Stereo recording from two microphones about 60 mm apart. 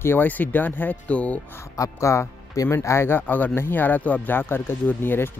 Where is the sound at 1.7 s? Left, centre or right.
Left.